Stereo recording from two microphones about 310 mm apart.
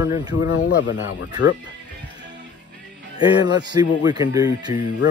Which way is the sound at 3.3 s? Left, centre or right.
Centre.